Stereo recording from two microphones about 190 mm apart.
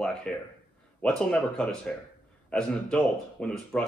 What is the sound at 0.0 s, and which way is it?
A man's voice, 5° left (ahead or behind).